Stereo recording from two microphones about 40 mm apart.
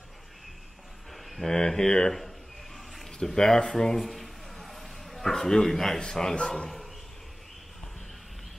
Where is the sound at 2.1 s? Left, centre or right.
Centre.